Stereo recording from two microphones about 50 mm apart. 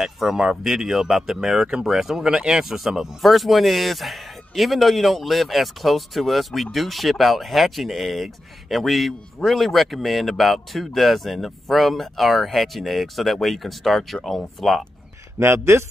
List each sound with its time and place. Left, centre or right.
0.0 s speech: centre
15.3 s a man's voice: right